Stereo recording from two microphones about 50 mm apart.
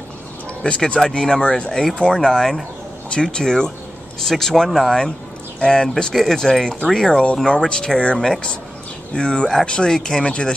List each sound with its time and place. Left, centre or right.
0.7 s speech: centre
1.7 s speech: centre